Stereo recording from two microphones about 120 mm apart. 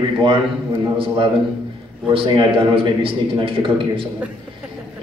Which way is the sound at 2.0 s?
45° right (ahead or behind).